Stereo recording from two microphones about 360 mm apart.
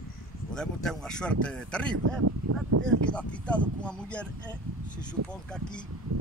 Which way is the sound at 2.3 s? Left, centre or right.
Right.